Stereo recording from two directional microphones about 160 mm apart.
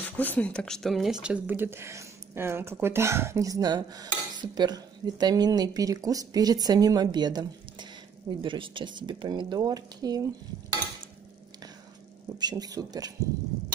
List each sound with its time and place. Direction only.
0.0 s speech: 10° left (ahead or behind); by 10.2 s 25° right (ahead or behind)
12.4 s speech: 25° right (ahead or behind)